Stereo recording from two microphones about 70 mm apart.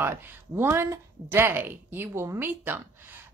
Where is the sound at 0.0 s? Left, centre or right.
Right.